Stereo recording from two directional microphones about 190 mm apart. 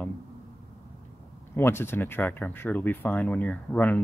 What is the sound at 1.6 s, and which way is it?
Speech, 10° left (ahead or behind).